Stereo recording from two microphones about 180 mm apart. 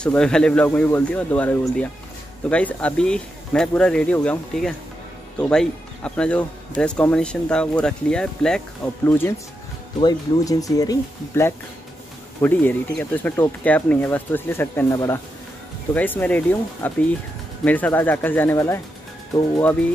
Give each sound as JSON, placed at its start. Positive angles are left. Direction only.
{"t": 0.0, "sound": "speech", "side_deg": 5}
{"t": 9.9, "sound": "speech", "side_deg": 20}